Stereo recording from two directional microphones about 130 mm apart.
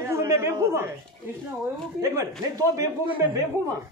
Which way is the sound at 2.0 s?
25° right (ahead or behind).